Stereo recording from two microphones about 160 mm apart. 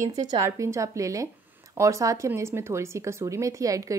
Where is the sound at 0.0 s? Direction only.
20° right (ahead or behind).